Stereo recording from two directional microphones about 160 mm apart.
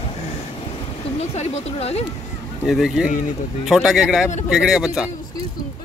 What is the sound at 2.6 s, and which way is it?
Speech, centre (ahead or behind).